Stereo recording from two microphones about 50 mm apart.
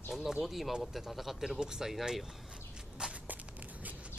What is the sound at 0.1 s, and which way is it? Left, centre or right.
Speech, centre.